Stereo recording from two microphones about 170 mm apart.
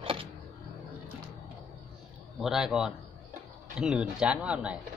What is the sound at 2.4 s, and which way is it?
Speech, 5° right (ahead or behind).